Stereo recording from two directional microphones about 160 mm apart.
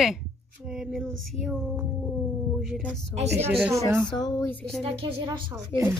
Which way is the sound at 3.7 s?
20° right (ahead or behind).